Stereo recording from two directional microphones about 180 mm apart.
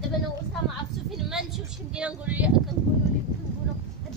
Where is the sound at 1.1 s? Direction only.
Centre (ahead or behind).